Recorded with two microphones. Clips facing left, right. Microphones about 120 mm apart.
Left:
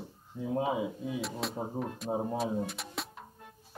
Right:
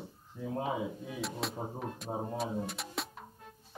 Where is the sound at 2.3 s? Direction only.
Centre (ahead or behind).